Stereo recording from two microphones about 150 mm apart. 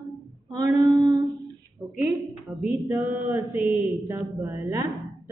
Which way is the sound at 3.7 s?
15° right (ahead or behind).